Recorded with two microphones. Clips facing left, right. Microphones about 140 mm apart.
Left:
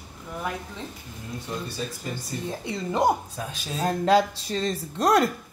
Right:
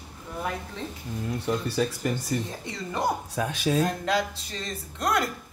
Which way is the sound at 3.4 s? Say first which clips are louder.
Right 8 dB; 65° right (ahead or behind).